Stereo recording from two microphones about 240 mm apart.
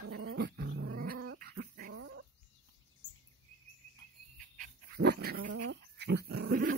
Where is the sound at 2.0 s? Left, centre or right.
Right.